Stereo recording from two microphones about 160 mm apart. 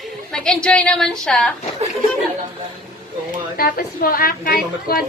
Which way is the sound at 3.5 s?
65° left (ahead or behind).